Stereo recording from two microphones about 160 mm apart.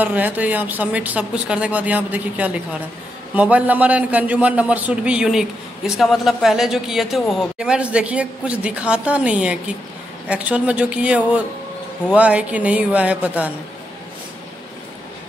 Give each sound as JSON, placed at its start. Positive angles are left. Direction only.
{"t": 0.0, "sound": "a man's voice", "side_deg": -10}